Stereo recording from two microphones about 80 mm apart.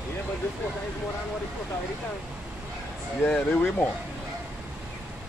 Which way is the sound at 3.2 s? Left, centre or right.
Centre.